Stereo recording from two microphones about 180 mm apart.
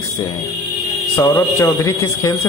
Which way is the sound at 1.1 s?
20° left (ahead or behind).